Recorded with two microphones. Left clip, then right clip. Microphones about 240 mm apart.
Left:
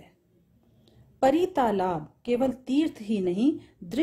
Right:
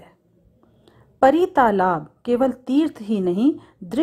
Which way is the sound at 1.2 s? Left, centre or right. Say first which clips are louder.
Right 8 dB; centre.